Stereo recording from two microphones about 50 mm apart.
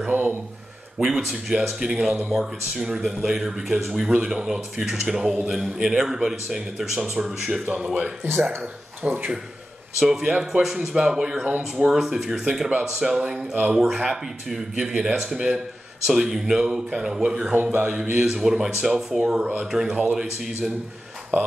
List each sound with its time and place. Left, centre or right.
0.0 s a sound: right
0.9 s a man's voice: centre
1.8 s speech: centre
7.8 s speech: right
8.2 s speech: right
9.0 s speech: right
9.9 s speech: centre
17.5 s speech: right
18.1 s speech: centre